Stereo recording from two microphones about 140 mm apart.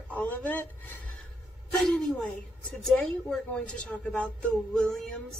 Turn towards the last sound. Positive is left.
turn(degrees=5)  # may be behind; listen again after turning